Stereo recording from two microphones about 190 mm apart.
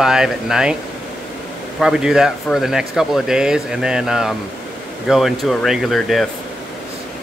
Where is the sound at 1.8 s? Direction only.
Centre (ahead or behind).